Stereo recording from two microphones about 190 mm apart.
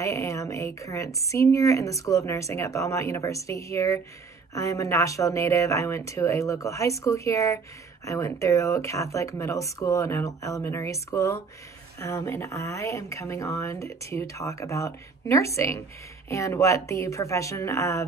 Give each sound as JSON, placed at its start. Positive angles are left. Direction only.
{"t": 0.0, "sound": "speech", "side_deg": 15}